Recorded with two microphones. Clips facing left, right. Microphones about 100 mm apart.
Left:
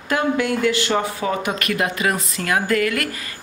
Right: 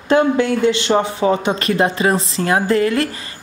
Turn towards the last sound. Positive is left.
turn(degrees=-30)  # may be behind; listen again after turning